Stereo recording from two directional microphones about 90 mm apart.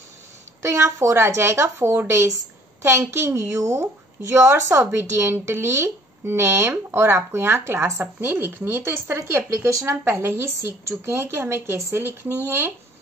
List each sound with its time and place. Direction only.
0.6 s a woman's voice: 30° right (ahead or behind)